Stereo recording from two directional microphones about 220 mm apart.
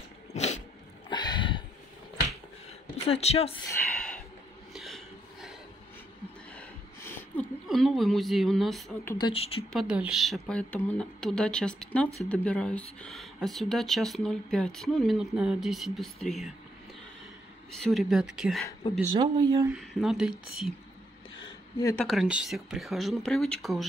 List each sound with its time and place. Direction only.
0.3 s dog: 30° left (ahead or behind)
1.1 s a sound: 20° left (ahead or behind)
3.1 s speech: 30° left (ahead or behind)
3.9 s snort: 5° left (ahead or behind)
4.7 s a sound: centre (ahead or behind)
6.5 s a sound: 5° left (ahead or behind)
9.2 s speech: 25° left (ahead or behind)
9.7 s speech: centre (ahead or behind)
17.6 s speech: 5° left (ahead or behind)
18.9 s speech: 15° right (ahead or behind)
19.7 s speech: centre (ahead or behind)
21.4 s a sound: 20° left (ahead or behind)
21.9 s speech: centre (ahead or behind)